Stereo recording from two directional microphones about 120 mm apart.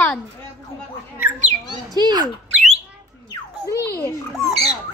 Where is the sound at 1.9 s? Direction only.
35° right (ahead or behind).